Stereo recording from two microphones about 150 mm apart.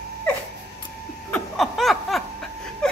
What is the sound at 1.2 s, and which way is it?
Laughter, 5° left (ahead or behind).